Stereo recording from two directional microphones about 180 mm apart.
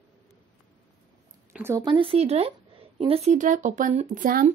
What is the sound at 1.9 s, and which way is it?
A woman's voice, 30° right (ahead or behind).